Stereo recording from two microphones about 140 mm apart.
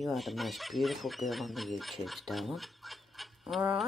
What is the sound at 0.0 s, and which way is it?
Speech, centre (ahead or behind).